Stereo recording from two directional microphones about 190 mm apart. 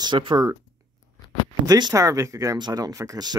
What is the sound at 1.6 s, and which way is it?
Speech, 20° right (ahead or behind).